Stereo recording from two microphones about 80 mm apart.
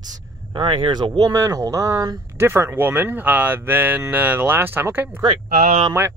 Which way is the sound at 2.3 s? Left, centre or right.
Right.